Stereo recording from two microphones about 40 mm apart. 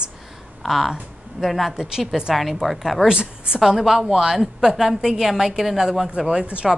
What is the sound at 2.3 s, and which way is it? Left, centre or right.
Speech, centre.